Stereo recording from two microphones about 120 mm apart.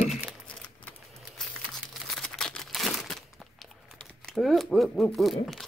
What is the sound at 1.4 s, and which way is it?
Crumpling, centre (ahead or behind).